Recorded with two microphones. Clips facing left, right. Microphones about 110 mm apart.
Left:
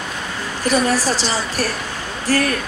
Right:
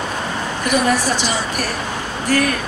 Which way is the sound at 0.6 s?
35° left (ahead or behind).